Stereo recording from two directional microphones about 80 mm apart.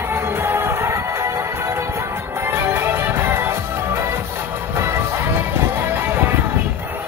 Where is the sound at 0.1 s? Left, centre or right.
Right.